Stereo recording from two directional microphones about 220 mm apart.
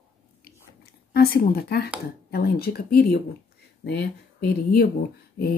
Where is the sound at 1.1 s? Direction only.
45° left (ahead or behind).